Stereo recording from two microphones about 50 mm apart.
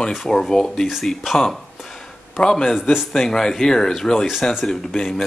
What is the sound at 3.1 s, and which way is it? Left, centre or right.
Speech, centre.